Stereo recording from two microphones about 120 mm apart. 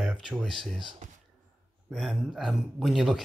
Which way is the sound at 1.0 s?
90° right.